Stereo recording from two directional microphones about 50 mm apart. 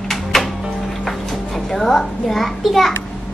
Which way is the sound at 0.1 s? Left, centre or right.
Centre.